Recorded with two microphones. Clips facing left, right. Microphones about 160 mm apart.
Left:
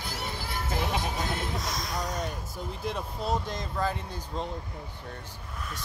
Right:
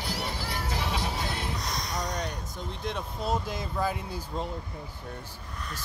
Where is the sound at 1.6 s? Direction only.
Centre (ahead or behind).